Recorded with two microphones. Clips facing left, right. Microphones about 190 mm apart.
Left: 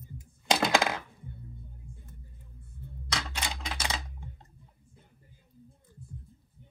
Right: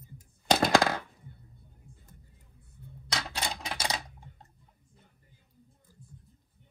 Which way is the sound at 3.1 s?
35° right (ahead or behind).